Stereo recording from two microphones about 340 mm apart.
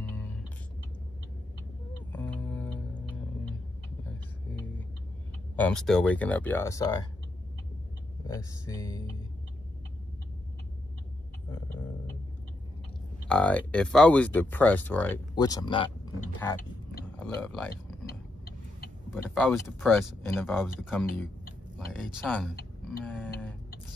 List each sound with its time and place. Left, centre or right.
0.1 s music: centre
2.1 s music: centre
5.6 s speech: centre
8.3 s speech: centre
13.3 s speech: centre
18.0 s vehicle: left
19.0 s speech: centre
22.8 s tick-tock: centre